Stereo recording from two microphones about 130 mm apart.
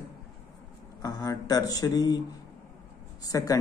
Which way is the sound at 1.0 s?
30° left (ahead or behind).